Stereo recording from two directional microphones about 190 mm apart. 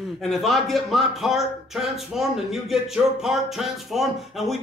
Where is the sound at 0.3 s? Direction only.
Centre (ahead or behind).